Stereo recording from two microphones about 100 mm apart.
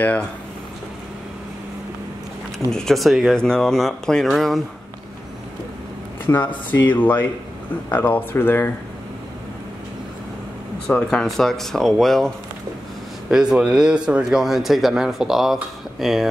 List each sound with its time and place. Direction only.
0.0 s speech: 15° left (ahead or behind)
2.7 s speech: 5° left (ahead or behind)
6.2 s speech: 20° left (ahead or behind)
10.9 s speech: 10° left (ahead or behind)
13.3 s speech: 5° right (ahead or behind)